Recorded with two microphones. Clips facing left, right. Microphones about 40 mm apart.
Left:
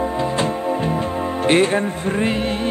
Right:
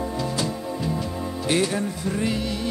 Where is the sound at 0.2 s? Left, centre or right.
Left.